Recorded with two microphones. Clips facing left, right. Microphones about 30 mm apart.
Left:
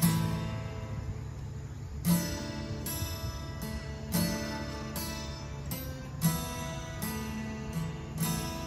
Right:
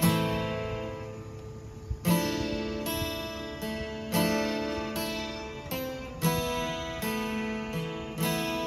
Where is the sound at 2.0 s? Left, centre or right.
Right.